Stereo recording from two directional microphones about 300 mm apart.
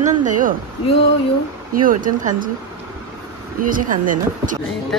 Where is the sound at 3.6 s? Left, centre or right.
Right.